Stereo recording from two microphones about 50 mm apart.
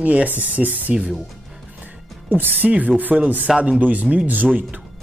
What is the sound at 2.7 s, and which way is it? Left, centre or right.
Speech, right.